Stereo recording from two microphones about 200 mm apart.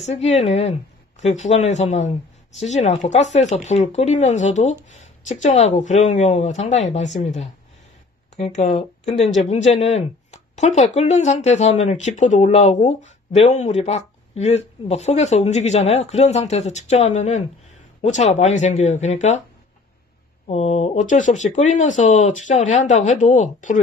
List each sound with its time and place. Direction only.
0.0 s speech: 35° left (ahead or behind)
20.4 s speech: 30° left (ahead or behind)